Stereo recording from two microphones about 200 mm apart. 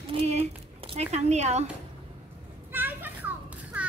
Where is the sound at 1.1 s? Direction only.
35° right (ahead or behind).